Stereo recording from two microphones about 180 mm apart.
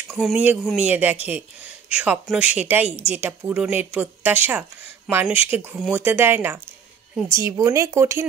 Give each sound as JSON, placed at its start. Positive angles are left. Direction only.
{"t": 0.2, "sound": "a woman's voice", "side_deg": -5}